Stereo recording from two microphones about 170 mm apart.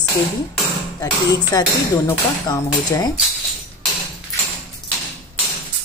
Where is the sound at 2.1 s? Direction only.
15° left (ahead or behind).